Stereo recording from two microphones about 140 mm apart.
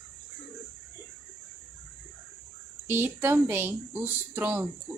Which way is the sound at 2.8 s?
15° right (ahead or behind).